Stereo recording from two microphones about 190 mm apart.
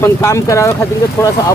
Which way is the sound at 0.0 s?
15° left (ahead or behind).